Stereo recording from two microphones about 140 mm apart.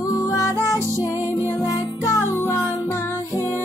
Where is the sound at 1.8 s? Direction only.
25° left (ahead or behind).